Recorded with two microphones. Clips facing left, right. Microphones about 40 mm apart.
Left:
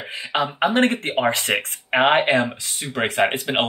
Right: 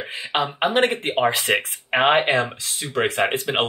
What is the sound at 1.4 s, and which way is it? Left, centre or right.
Speech, centre.